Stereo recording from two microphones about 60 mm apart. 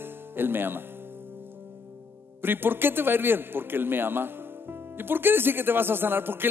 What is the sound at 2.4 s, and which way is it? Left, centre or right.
A man's voice, right.